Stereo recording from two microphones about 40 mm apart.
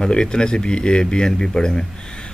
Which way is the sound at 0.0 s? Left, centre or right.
Left.